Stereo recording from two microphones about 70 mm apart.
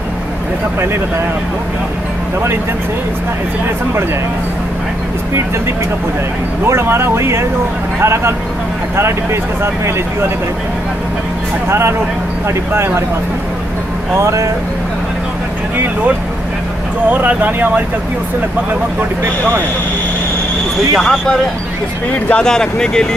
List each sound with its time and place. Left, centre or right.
6.6 s speech: right
12.4 s speech: right
14.1 s speech: right
17.1 s speech: right
20.9 s speech: centre